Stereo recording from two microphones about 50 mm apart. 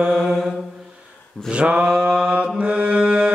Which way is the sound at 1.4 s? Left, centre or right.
Right.